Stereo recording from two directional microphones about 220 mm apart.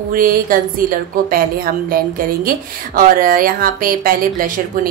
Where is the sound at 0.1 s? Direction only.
40° right (ahead or behind).